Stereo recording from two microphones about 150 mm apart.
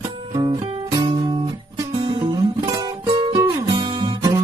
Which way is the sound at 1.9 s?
40° right (ahead or behind).